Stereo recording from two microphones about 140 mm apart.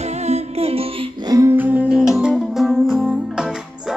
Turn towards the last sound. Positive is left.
turn(degrees=-5)  # may be behind; listen again after turning